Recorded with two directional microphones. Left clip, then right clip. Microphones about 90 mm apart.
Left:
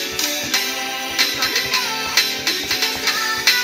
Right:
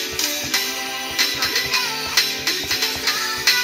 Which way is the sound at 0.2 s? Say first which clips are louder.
Left 2 dB; 25° left (ahead or behind).